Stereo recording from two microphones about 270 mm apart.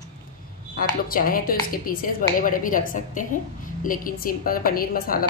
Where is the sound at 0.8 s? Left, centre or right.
Left.